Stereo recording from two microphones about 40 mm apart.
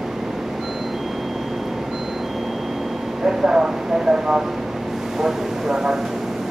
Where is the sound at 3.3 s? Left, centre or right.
Centre.